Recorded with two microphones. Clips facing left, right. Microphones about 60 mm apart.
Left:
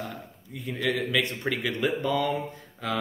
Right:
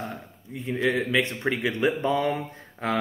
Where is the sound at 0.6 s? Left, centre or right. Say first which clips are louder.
Right 3 dB; right.